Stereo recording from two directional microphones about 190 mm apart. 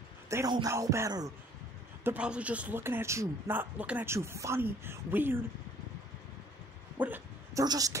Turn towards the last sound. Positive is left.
turn(degrees=-20)  # may be behind; listen again after turning